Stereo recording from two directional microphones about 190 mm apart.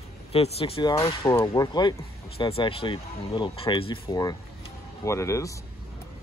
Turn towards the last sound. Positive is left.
turn(degrees=15)  # may be behind; listen again after turning